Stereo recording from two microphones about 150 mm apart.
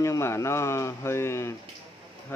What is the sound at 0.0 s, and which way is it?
A man's voice, 20° left (ahead or behind).